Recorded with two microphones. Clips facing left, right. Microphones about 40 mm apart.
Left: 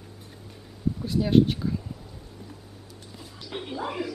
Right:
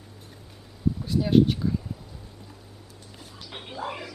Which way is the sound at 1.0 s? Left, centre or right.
Centre.